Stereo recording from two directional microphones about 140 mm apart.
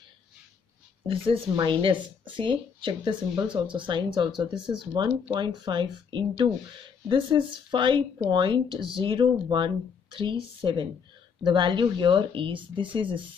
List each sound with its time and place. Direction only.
1.0 s speech: 40° right (ahead or behind)